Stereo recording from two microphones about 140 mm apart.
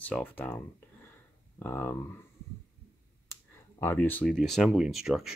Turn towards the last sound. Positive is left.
turn(degrees=0)  # may be behind; listen again after turning